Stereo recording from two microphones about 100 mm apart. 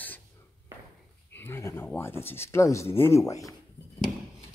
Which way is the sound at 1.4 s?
25° left (ahead or behind).